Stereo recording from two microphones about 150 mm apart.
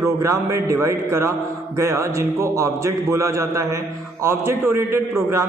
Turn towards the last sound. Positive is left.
turn(degrees=-20)  # may be behind; listen again after turning